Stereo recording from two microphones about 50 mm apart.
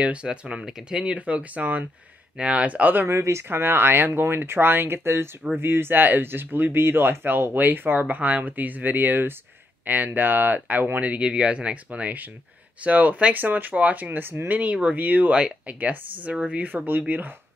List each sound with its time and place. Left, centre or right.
0.0 s speech: right
0.9 s speech: right
3.1 s speech: right
3.4 s speech: right
14.5 s speech: right